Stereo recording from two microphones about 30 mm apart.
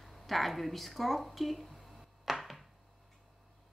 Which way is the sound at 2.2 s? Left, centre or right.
Centre.